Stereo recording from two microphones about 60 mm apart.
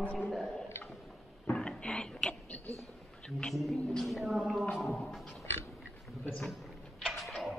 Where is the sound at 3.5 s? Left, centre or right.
Centre.